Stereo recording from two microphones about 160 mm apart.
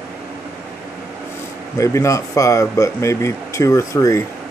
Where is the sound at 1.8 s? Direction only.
20° left (ahead or behind).